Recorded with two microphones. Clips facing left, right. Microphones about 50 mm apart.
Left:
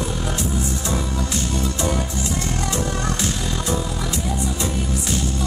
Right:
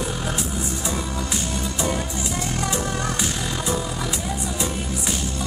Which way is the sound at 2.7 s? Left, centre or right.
Centre.